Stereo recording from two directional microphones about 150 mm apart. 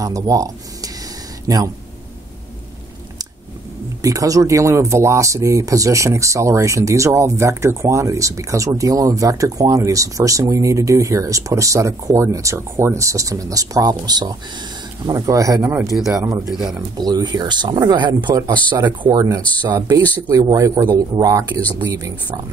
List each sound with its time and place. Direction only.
0.0 s speech: 20° right (ahead or behind)
1.5 s speech: 25° right (ahead or behind)
4.0 s speech: 25° right (ahead or behind)